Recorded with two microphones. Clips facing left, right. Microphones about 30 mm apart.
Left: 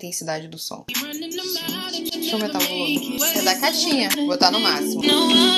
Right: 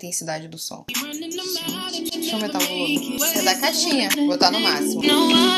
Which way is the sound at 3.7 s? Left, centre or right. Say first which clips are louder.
Even; centre.